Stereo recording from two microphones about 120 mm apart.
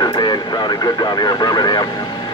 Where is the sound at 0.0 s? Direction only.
35° left (ahead or behind).